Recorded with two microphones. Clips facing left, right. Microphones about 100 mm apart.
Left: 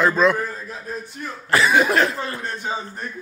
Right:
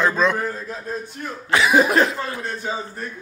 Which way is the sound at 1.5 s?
Centre (ahead or behind).